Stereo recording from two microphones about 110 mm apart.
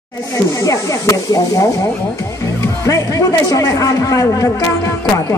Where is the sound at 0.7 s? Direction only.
30° left (ahead or behind).